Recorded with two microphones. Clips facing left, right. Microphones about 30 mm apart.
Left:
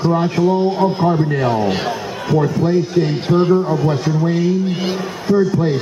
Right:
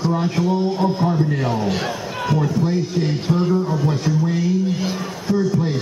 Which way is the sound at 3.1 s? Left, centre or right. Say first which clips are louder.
Left 5 dB; left.